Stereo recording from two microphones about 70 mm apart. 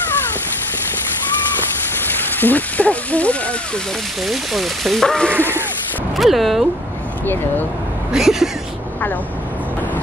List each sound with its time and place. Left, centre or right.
2.1 s speech: left
4.3 s speech: centre
8.1 s speech: centre